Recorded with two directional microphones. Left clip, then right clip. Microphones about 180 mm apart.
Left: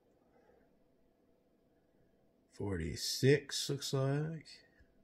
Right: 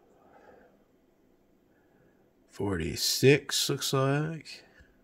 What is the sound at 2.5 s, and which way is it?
Speech, 45° right (ahead or behind).